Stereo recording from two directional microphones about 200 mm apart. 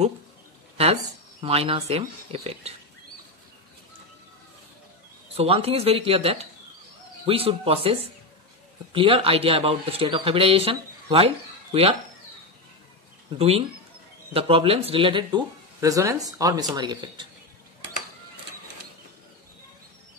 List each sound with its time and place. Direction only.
1.4 s speech: 30° right (ahead or behind)
5.3 s speech: 30° right (ahead or behind)
13.4 s speech: 30° right (ahead or behind)